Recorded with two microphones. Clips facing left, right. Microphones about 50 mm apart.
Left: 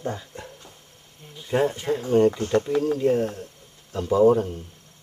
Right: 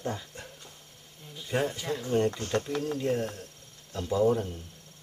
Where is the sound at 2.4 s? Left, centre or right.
Centre.